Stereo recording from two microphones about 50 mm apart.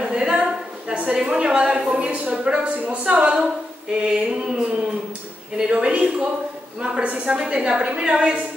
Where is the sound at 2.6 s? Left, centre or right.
Right.